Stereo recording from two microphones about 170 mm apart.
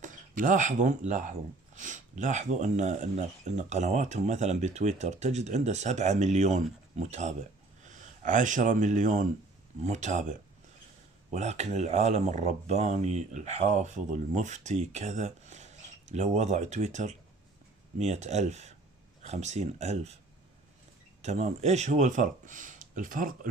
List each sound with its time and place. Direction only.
0.0 s speech: 45° right (ahead or behind)
11.3 s speech: 40° right (ahead or behind)
21.2 s speech: 40° right (ahead or behind)